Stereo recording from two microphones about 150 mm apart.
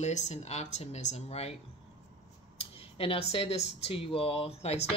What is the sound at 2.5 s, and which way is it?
Speech, 40° left (ahead or behind).